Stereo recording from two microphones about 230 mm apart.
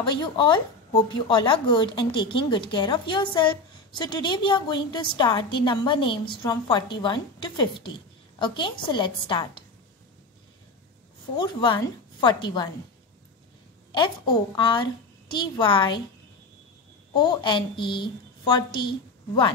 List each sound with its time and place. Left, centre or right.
0.0 s speech: centre
11.3 s speech: centre
13.9 s speech: centre
17.1 s speech: centre